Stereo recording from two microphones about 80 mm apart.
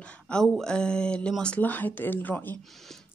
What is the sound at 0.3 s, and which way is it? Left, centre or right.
Speech, centre.